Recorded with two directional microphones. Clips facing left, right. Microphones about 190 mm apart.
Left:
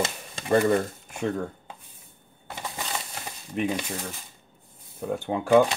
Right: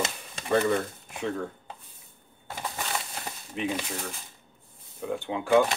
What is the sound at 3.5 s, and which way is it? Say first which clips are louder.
Speech: left 4 dB; 50° left (ahead or behind).